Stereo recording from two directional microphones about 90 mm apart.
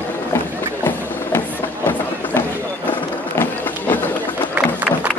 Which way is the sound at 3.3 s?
25° left (ahead or behind).